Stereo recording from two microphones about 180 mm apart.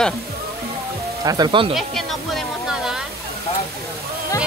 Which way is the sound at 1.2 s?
20° right (ahead or behind).